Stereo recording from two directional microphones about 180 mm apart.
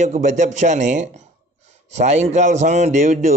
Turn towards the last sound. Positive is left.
turn(degrees=-40)  # may be behind; listen again after turning